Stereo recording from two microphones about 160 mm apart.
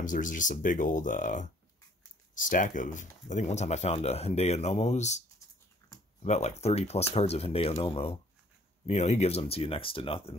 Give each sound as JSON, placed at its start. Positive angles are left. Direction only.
{"t": 0.0, "sound": "speech", "side_deg": 55}
{"t": 5.8, "sound": "typing", "side_deg": 20}
{"t": 6.2, "sound": "speech", "side_deg": 45}